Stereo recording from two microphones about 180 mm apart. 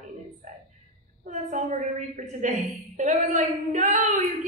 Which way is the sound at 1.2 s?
40° right (ahead or behind).